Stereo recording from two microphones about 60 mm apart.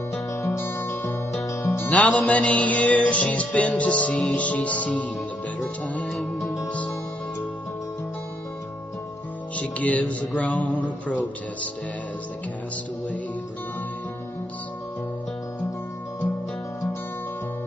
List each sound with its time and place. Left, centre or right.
0.1 s music: left
1.4 s music: left
1.9 s music: left
6.0 s music: centre
9.6 s music: left